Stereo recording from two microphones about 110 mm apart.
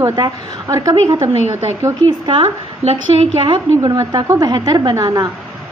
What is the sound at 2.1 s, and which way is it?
A woman's voice, 50° right (ahead or behind).